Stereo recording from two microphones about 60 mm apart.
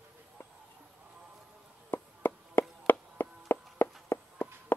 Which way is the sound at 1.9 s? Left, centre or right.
Left.